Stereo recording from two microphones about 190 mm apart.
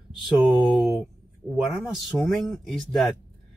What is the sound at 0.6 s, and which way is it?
Speech, centre (ahead or behind).